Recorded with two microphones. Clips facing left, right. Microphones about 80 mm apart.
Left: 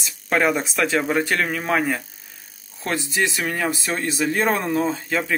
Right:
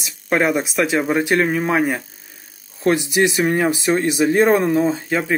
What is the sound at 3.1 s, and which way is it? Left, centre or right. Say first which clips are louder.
Speech: right 6 dB; right.